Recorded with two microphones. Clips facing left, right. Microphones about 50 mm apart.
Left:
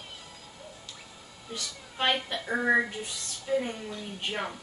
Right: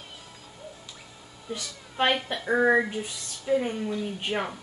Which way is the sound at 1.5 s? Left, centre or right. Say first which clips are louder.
Right 3 dB; centre.